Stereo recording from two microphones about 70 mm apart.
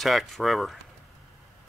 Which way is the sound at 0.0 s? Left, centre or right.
Centre.